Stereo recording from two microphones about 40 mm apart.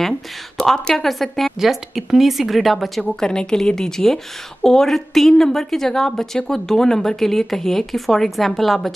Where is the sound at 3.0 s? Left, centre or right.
Centre.